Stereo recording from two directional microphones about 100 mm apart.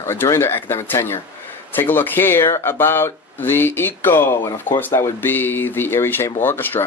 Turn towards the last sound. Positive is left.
turn(degrees=20)  # may be behind; listen again after turning